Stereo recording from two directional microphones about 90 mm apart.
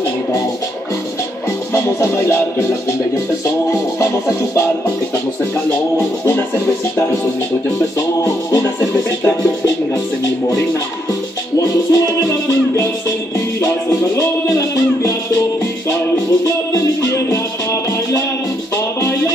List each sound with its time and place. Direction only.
3.7 s music: 40° left (ahead or behind)
8.2 s music: 35° left (ahead or behind)
11.5 s music: 40° left (ahead or behind)
18.9 s music: 35° left (ahead or behind)